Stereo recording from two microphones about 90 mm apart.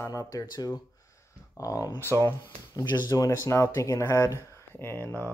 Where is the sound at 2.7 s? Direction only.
50° left (ahead or behind).